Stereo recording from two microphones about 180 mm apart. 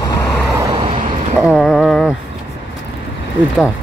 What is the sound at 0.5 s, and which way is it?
Vehicle, 30° right (ahead or behind).